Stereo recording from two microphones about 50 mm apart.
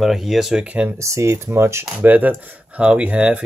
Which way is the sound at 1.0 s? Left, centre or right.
Right.